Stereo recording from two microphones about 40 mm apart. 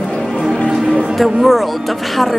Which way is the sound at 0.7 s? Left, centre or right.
Centre.